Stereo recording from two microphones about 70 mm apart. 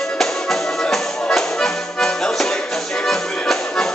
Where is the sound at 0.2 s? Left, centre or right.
Centre.